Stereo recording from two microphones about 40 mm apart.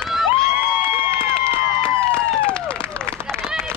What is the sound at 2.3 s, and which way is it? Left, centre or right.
Run, left.